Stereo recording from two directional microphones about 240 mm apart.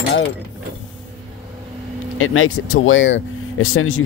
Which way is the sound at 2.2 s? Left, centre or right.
Left.